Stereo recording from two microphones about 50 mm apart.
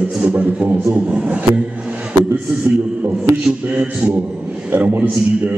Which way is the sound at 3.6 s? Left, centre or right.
Right.